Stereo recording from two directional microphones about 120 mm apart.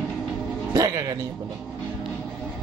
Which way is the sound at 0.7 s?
30° right (ahead or behind).